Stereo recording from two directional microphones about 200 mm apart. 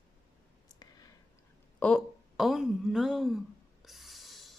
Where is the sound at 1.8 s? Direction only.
Centre (ahead or behind).